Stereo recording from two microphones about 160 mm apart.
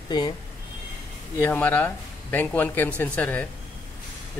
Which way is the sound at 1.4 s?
10° left (ahead or behind).